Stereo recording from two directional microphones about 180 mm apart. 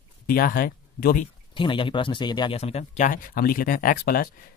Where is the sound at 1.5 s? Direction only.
30° left (ahead or behind).